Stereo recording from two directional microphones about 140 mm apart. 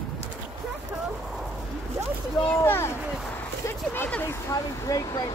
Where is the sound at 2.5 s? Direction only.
15° left (ahead or behind).